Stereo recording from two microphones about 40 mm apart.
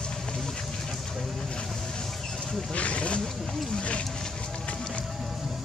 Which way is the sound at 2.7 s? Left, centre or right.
Left.